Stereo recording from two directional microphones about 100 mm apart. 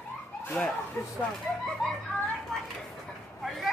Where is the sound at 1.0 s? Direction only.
25° left (ahead or behind).